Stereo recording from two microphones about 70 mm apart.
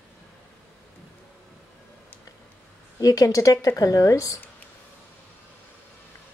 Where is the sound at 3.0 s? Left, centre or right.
Left.